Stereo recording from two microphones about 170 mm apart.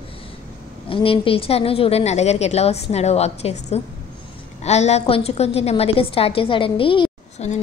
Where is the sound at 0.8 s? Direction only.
30° left (ahead or behind).